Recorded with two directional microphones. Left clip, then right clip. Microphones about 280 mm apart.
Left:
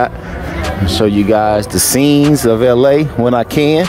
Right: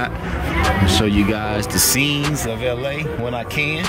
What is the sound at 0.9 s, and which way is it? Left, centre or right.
Speech, centre.